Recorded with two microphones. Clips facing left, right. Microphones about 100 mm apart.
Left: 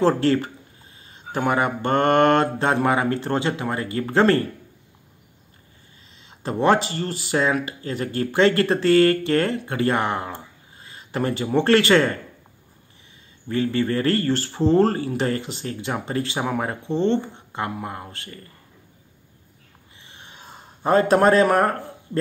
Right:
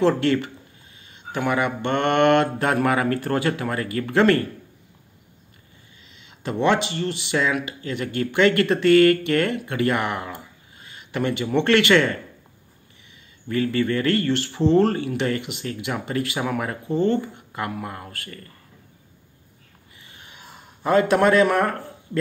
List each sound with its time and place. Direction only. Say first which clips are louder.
0.0 s speech: left 1 dB; 35° left (ahead or behind)
6.2 s speech: left 2 dB; 35° left (ahead or behind)
13.5 s speech: even; 30° left (ahead or behind)
20.1 s a sound: left 2 dB; 30° left (ahead or behind)